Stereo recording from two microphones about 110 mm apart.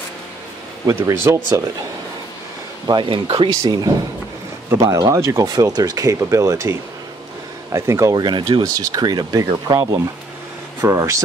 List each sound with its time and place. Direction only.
0.8 s speech: 25° right (ahead or behind)
2.9 s speech: 50° right (ahead or behind)
4.8 s speech: 30° right (ahead or behind)
8.6 s speech: 30° right (ahead or behind)